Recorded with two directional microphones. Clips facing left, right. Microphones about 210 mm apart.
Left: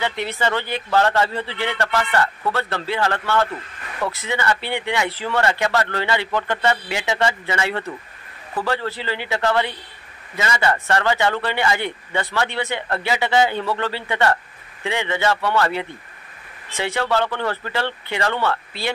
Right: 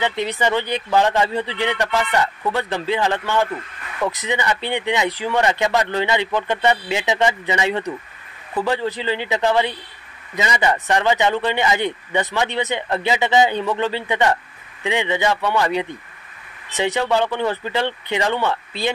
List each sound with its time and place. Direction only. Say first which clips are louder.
0.2 s a man's voice: right 3 dB; 15° right (ahead or behind)